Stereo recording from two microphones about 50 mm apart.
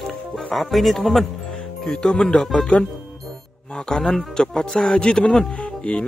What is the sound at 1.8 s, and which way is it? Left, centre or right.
Speech, centre.